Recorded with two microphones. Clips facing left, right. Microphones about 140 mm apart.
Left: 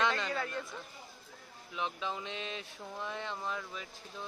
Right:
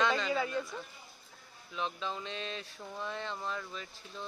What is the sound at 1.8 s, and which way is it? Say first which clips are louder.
Speech: even; 15° left (ahead or behind).